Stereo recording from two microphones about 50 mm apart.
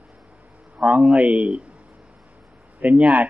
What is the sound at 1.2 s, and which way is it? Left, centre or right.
Speech, right.